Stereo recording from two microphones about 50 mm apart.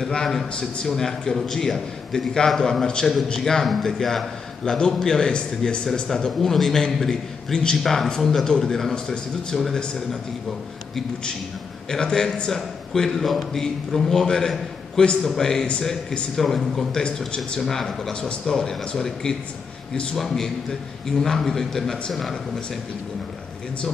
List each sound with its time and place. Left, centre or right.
0.0 s a man's voice: centre
6.0 s a man's voice: centre
7.5 s speech: centre
7.8 s a man's voice: centre
11.9 s a man's voice: centre